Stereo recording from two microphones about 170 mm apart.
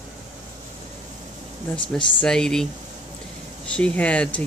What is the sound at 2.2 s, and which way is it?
Speech, 5° left (ahead or behind).